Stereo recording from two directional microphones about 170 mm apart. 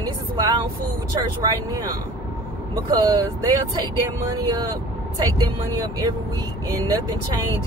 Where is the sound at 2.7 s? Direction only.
25° right (ahead or behind).